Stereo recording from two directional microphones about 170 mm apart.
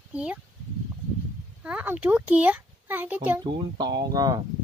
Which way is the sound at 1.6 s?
10° right (ahead or behind).